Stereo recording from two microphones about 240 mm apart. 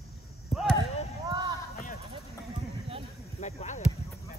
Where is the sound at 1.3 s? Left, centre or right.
Centre.